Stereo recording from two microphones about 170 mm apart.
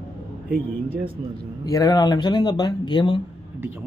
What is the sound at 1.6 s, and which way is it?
Speech, 20° left (ahead or behind).